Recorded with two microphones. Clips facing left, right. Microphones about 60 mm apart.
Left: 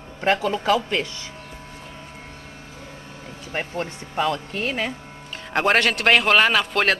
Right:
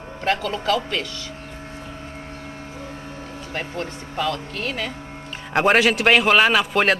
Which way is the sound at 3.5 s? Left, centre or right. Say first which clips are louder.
Left 2 dB; left.